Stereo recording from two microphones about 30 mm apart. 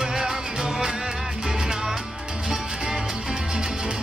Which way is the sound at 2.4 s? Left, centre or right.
Right.